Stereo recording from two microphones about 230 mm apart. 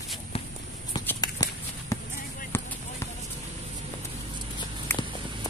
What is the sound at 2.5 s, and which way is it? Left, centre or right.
Basketball bounce, centre.